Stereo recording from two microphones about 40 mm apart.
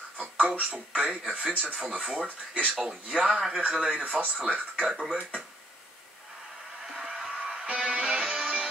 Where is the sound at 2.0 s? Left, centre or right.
Right.